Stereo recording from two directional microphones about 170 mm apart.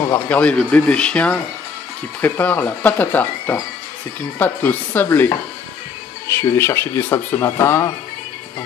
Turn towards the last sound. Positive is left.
turn(degrees=15)  # may be behind; listen again after turning